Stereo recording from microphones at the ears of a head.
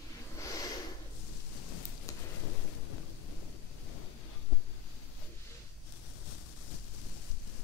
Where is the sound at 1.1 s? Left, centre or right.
Left.